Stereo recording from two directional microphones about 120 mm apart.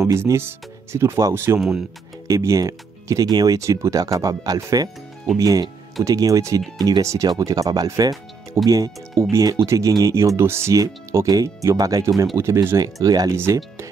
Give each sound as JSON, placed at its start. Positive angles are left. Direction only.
{"t": 0.0, "sound": "speech", "side_deg": -20}